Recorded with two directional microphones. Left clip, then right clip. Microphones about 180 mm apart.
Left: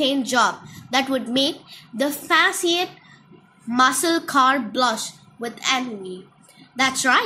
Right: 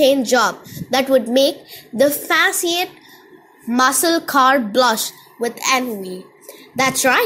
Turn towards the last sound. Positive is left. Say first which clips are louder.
# right 3 dB
turn(degrees=-30)  # may be behind; listen again after turning